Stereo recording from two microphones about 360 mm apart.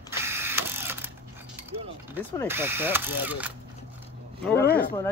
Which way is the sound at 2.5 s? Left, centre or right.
Centre.